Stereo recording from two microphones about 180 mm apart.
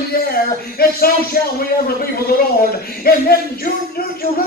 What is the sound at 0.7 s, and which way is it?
Speech, 60° left (ahead or behind).